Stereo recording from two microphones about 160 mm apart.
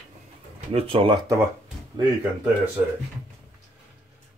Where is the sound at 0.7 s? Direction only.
35° right (ahead or behind).